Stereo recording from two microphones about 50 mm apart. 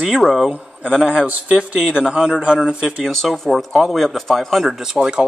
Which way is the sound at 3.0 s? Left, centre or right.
Centre.